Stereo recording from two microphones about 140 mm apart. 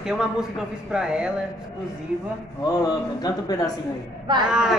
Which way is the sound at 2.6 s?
30° left (ahead or behind).